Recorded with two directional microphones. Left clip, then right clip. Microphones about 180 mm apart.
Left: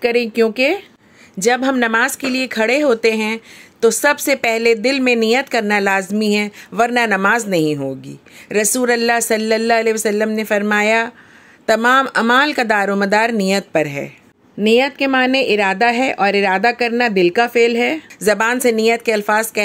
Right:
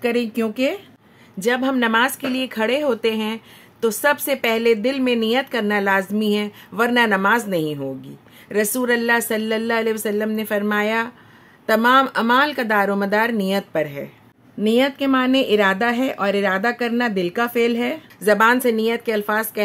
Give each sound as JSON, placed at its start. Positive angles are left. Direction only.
{"t": 0.0, "sound": "speech", "side_deg": 25}